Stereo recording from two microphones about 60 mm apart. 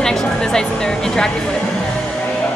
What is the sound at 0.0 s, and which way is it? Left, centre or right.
Speech, centre.